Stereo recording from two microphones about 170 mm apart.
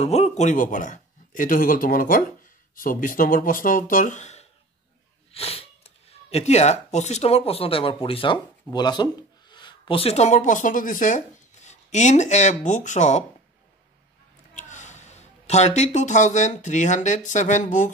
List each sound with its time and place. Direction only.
0.0 s speech: 40° left (ahead or behind)
14.5 s speech: 45° left (ahead or behind)